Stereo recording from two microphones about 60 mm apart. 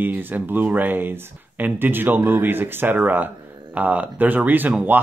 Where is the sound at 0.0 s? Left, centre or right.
Right.